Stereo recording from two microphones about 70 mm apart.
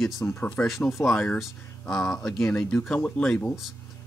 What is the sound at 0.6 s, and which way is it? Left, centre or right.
Speech, centre.